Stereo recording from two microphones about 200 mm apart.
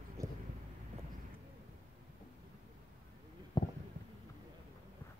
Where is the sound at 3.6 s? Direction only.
20° left (ahead or behind).